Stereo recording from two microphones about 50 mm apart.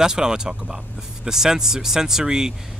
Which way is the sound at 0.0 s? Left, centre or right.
Centre.